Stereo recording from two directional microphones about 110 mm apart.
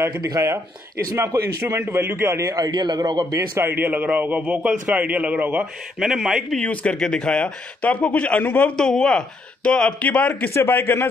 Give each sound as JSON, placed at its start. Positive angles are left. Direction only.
{"t": 1.1, "sound": "a man's voice", "side_deg": -25}
{"t": 3.3, "sound": "a man's voice", "side_deg": -25}
{"t": 6.6, "sound": "a man's voice", "side_deg": 10}